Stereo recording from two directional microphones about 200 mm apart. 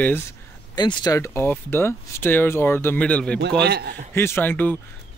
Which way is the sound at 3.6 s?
55° right (ahead or behind).